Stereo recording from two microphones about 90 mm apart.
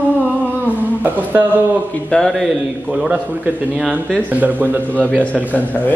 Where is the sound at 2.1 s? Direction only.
5° left (ahead or behind).